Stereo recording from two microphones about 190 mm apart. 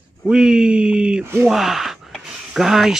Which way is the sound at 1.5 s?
Centre (ahead or behind).